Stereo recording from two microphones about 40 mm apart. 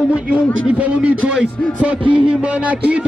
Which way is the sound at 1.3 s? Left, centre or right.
Right.